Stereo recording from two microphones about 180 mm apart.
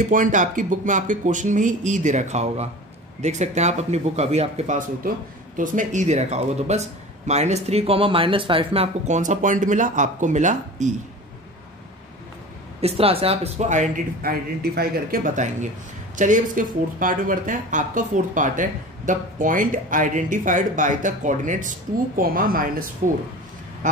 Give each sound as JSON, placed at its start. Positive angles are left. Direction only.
{"t": 0.1, "sound": "speech", "side_deg": -45}
{"t": 12.8, "sound": "speech", "side_deg": -35}